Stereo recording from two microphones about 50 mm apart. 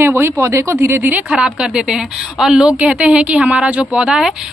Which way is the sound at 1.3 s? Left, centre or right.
Centre.